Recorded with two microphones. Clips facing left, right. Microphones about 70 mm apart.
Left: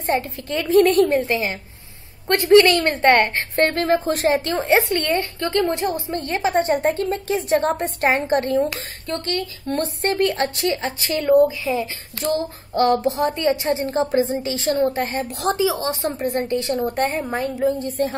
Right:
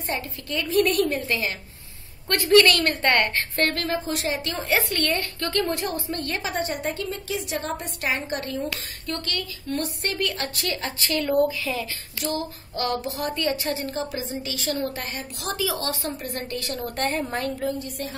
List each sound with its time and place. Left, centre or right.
0.0 s a woman's voice: left
4.0 s a woman's voice: left
12.2 s a woman's voice: left; by 17.6 s centre
17.6 s a woman's voice: left